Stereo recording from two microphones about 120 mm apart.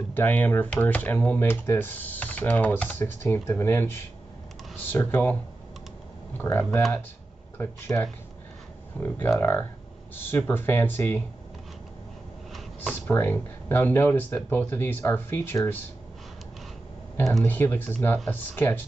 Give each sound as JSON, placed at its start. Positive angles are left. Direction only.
{"t": 0.1, "sound": "speech", "side_deg": 15}
{"t": 13.0, "sound": "speech", "side_deg": 15}
{"t": 17.5, "sound": "speech", "side_deg": 15}